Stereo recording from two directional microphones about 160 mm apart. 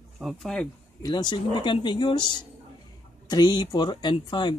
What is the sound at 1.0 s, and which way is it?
Speech, 25° left (ahead or behind).